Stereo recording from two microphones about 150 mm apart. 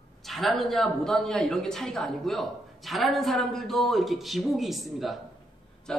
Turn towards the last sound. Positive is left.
turn(degrees=5)  # may be behind; listen again after turning